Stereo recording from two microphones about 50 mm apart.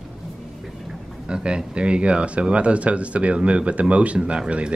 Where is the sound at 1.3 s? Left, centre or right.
Centre.